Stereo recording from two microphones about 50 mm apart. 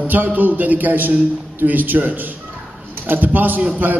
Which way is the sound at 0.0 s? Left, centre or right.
Right.